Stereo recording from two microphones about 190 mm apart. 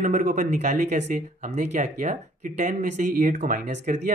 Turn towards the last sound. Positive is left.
turn(degrees=-40)  # may be behind; listen again after turning